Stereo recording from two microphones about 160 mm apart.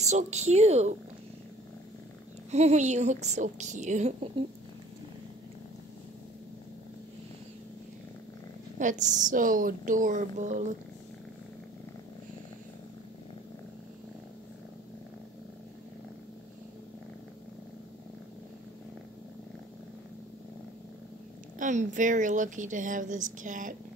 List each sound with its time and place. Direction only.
0.0 s a woman's voice: 45° right (ahead or behind)
2.5 s a woman's voice: 45° right (ahead or behind)
8.7 s a woman's voice: 50° right (ahead or behind)
21.5 s a woman's voice: 50° right (ahead or behind)